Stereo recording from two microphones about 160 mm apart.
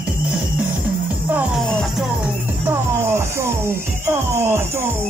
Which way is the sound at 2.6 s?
15° right (ahead or behind).